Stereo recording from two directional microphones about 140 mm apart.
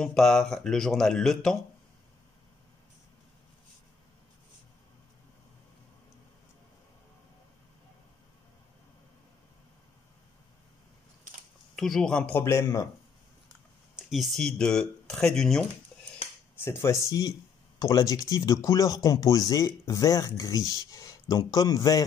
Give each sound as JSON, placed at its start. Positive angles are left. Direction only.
{"t": 0.0, "sound": "speech", "side_deg": 5}
{"t": 11.7, "sound": "speech", "side_deg": 0}
{"t": 13.9, "sound": "speech", "side_deg": 0}
{"t": 16.5, "sound": "speech", "side_deg": 20}